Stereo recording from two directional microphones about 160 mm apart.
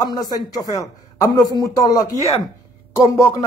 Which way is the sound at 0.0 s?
25° left (ahead or behind).